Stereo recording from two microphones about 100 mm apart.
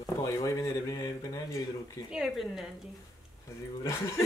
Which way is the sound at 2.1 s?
5° right (ahead or behind).